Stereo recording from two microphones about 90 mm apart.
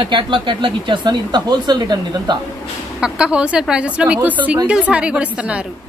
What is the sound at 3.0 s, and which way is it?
Speech, 10° right (ahead or behind).